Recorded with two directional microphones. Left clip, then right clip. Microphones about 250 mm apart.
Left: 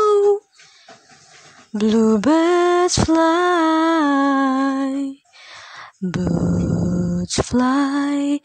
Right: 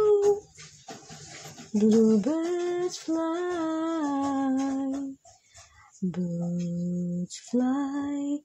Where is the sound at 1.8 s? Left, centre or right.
Left.